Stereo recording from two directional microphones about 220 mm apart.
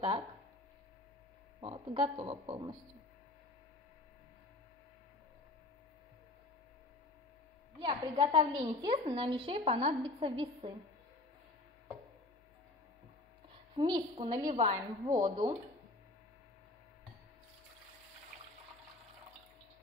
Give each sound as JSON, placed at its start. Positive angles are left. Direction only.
{"t": 1.6, "sound": "a woman's voice", "side_deg": -20}
{"t": 7.8, "sound": "a woman's voice", "side_deg": -20}
{"t": 13.5, "sound": "a woman's voice", "side_deg": -20}
{"t": 14.4, "sound": "a woman's voice", "side_deg": -30}
{"t": 14.7, "sound": "a woman's voice", "side_deg": -20}